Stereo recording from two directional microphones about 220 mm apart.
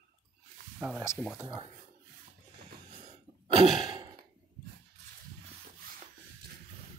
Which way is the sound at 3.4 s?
20° right (ahead or behind).